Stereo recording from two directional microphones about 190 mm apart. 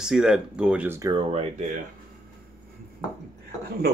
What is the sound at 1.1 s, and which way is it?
Speech, 30° right (ahead or behind).